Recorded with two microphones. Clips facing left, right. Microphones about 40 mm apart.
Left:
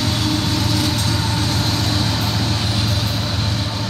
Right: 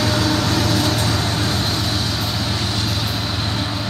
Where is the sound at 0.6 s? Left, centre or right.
Centre.